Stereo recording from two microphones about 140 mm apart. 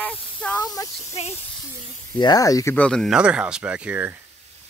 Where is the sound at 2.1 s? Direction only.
30° left (ahead or behind).